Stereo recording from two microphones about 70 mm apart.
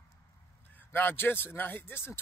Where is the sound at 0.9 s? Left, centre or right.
Left.